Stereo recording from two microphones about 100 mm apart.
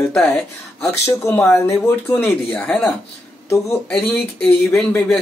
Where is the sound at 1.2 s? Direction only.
25° left (ahead or behind).